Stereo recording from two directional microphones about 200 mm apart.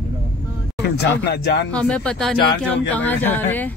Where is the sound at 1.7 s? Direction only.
5° left (ahead or behind).